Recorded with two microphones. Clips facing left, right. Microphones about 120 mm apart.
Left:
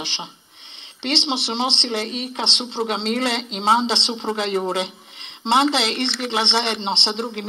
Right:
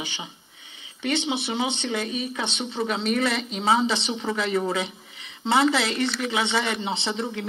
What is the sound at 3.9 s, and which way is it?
Speech, 30° left (ahead or behind).